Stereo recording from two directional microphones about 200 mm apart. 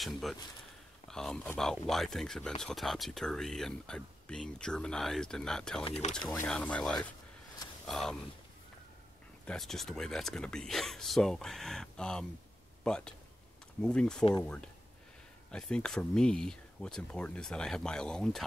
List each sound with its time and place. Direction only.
0.0 s speech: centre (ahead or behind)
7.0 s a sound: 15° left (ahead or behind)
7.8 s speech: centre (ahead or behind)
9.5 s speech: centre (ahead or behind)
15.5 s speech: 5° left (ahead or behind)